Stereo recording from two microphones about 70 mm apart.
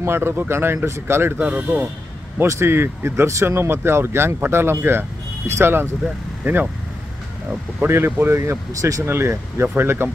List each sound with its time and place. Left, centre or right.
0.0 s speech: right
1.4 s speech: right
2.4 s speech: right
2.7 s speech: right
6.4 s speech: right
7.8 s speech: right